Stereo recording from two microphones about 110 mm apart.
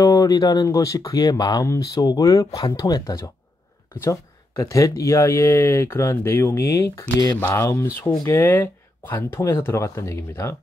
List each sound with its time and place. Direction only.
0.0 s speech: 35° left (ahead or behind)